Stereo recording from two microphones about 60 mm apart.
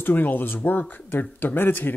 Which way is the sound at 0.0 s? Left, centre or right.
Left.